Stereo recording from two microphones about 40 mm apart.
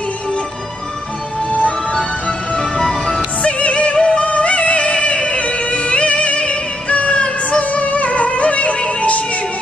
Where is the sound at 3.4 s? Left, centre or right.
Left.